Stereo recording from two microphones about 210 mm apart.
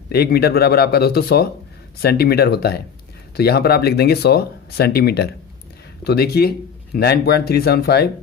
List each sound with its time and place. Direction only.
0.1 s speech: 50° left (ahead or behind)